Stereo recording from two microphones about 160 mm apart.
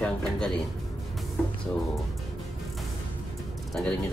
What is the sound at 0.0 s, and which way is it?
Music, 5° left (ahead or behind).